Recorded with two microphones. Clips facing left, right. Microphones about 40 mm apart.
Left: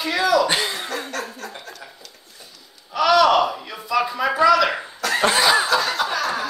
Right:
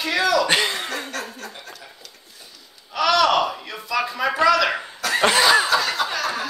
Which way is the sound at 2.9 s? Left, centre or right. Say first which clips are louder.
Left 2 dB; centre.